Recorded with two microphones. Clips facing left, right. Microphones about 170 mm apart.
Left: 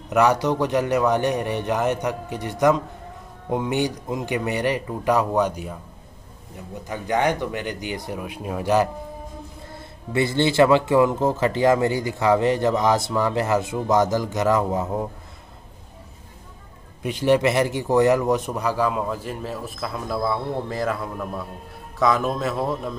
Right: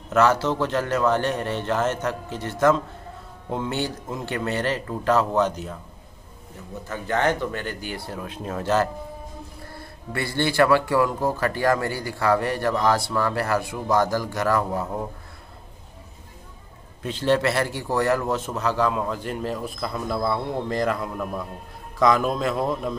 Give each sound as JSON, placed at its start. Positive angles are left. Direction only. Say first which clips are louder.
{"t": 0.1, "sound": "a man's voice", "louder": "left 1 dB", "side_deg": 15}
{"t": 6.9, "sound": "a man's voice", "louder": "left 1 dB", "side_deg": 15}
{"t": 17.0, "sound": "a man's voice", "louder": "left 3 dB", "side_deg": 15}